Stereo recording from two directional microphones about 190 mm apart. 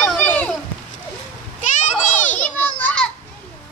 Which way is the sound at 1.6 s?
40° left (ahead or behind).